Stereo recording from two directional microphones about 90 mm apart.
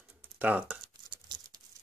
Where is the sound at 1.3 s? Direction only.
50° right (ahead or behind).